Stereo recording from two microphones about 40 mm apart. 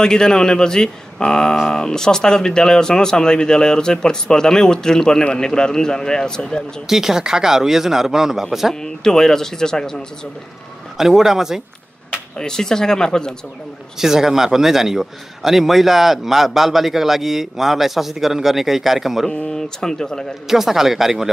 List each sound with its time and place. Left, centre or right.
0.0 s a man's voice: centre
6.9 s a man's voice: centre
8.7 s speech: centre
11.0 s a man's voice: centre
12.4 s speech: centre
13.9 s a man's voice: centre
19.4 s speech: centre
20.4 s a man's voice: centre